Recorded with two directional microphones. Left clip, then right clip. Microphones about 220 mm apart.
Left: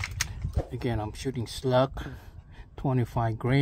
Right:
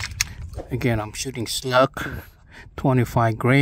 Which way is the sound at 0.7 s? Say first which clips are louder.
Right 9 dB; 40° right (ahead or behind).